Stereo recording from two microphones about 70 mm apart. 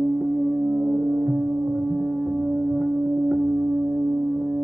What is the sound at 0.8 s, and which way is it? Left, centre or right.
Music, right.